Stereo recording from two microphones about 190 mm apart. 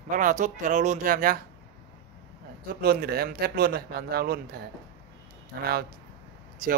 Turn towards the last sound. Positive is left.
turn(degrees=-45)  # may be behind; listen again after turning